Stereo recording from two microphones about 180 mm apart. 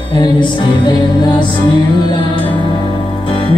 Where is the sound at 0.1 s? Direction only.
25° left (ahead or behind).